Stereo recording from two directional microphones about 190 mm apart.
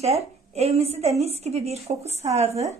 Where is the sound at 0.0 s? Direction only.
35° right (ahead or behind).